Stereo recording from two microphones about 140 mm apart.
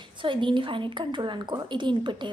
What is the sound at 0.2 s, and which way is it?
A woman's voice, 35° right (ahead or behind).